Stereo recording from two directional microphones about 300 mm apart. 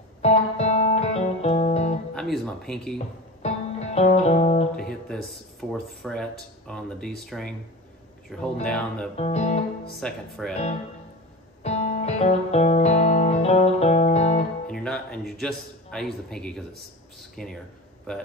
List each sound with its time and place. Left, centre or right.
0.2 s music: left
2.1 s speech: centre
3.4 s music: left
5.0 s speech: centre
9.1 s speech: left
9.9 s speech: centre
11.6 s music: left
14.7 s a man's voice: centre